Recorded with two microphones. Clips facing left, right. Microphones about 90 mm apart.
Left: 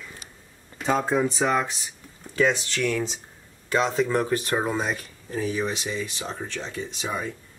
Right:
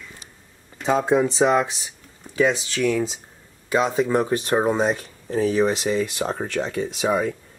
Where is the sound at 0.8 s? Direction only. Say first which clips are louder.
Right 4 dB; 15° right (ahead or behind); by 5.4 s 30° right (ahead or behind).